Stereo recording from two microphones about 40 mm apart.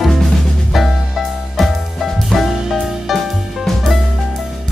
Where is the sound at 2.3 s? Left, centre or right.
Centre.